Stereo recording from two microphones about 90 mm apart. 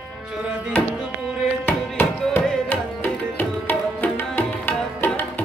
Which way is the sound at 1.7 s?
25° left (ahead or behind).